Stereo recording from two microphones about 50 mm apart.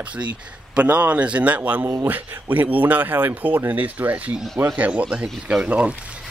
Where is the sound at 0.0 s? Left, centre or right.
Right.